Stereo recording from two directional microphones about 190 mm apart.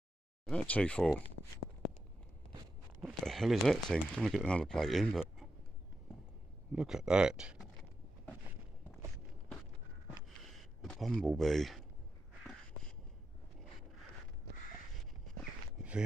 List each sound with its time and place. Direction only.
0.5 s speech: 5° left (ahead or behind)
3.0 s speech: centre (ahead or behind)
6.7 s speech: 5° right (ahead or behind)
10.4 s a sound: centre (ahead or behind)